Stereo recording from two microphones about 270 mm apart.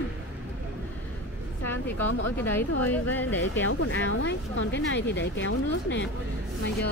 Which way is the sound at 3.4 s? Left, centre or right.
Left.